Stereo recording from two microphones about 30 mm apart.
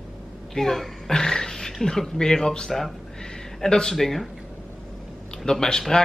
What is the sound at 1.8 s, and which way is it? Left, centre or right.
Speech, centre.